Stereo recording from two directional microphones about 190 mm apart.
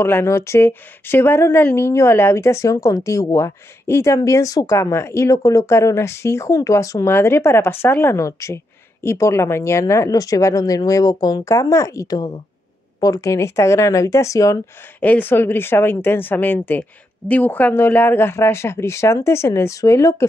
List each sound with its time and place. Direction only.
0.0 s speech: 15° left (ahead or behind)